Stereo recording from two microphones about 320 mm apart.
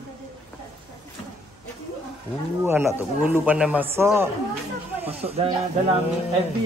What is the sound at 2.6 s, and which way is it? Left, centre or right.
Speech, centre.